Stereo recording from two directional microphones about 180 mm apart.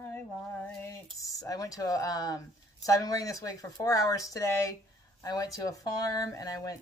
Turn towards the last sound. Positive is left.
turn(degrees=20)  # may be behind; listen again after turning